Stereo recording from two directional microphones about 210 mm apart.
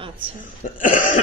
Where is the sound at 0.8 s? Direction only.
40° left (ahead or behind).